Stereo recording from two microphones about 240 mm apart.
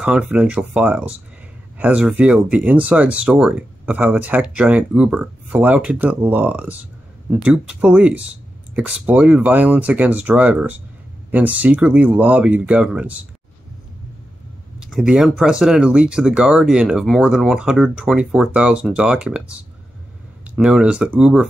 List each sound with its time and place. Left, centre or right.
0.0 s speech: centre
14.8 s speech: centre